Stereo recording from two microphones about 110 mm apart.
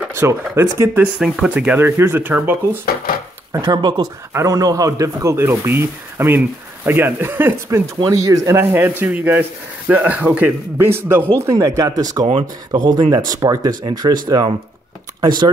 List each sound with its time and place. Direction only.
0.1 s speech: 25° right (ahead or behind)
1.2 s speech: 5° right (ahead or behind)
1.8 s speech: 20° right (ahead or behind)
3.6 s speech: 45° right (ahead or behind)
4.3 s speech: 30° right (ahead or behind)
8.0 s speech: 30° right (ahead or behind)
12.3 s speech: 60° right (ahead or behind)
13.1 s speech: 35° right (ahead or behind)